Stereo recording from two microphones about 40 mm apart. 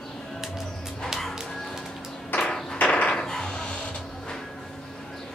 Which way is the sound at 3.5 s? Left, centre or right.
Left.